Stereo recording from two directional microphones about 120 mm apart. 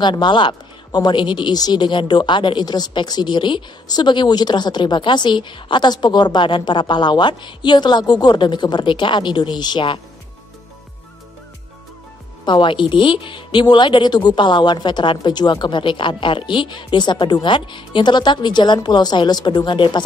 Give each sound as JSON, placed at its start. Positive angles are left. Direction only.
{"t": 0.0, "sound": "speech", "side_deg": 40}
{"t": 12.4, "sound": "speech", "side_deg": 40}